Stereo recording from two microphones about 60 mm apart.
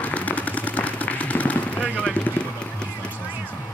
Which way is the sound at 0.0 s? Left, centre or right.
Left.